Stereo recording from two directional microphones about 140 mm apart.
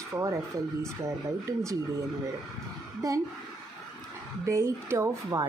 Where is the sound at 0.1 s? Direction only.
20° right (ahead or behind).